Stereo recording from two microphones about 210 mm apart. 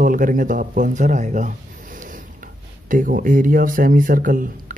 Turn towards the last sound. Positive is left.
turn(degrees=-40)  # may be behind; listen again after turning